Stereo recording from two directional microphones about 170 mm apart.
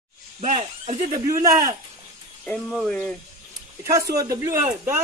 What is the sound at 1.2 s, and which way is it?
Speech, 20° right (ahead or behind).